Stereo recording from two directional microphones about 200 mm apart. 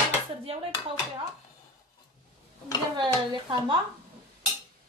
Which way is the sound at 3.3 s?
25° right (ahead or behind).